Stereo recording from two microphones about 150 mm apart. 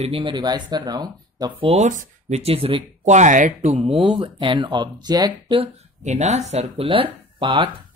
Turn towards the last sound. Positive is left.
turn(degrees=-35)  # may be behind; listen again after turning